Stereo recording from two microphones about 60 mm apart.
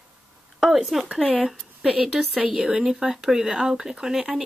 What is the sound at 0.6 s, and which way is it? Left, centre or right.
Speech, centre.